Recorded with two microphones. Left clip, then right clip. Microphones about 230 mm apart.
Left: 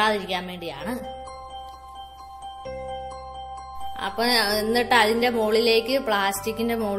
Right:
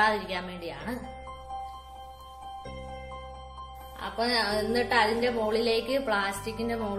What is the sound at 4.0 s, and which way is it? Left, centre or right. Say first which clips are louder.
A woman's voice: left 5 dB; left.